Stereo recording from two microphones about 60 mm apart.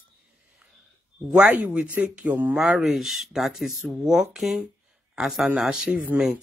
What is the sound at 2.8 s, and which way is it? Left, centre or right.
Speech, centre.